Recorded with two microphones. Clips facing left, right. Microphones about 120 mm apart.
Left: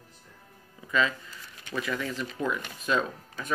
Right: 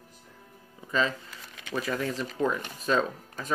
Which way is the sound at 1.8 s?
40° right (ahead or behind).